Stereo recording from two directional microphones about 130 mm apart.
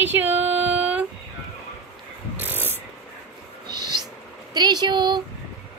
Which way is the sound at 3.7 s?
35° right (ahead or behind).